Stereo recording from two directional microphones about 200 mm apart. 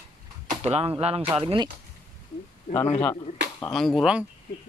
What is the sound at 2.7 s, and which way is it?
Speech, 40° left (ahead or behind).